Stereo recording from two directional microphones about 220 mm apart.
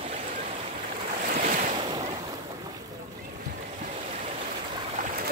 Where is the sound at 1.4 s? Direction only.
35° right (ahead or behind).